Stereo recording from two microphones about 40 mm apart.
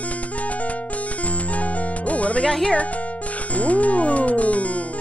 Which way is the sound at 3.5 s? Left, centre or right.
Left.